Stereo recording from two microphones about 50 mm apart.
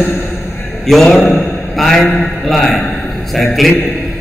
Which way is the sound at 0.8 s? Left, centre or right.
Centre.